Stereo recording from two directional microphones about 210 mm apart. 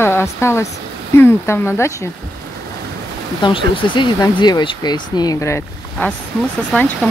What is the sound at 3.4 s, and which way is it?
Speech, 25° left (ahead or behind).